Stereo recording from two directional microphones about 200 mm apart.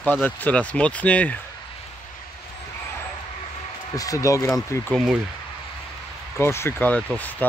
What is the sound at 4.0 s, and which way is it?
Speech, 15° left (ahead or behind).